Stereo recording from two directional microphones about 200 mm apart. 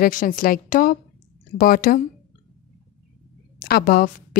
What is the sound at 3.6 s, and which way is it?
Speech, 50° left (ahead or behind).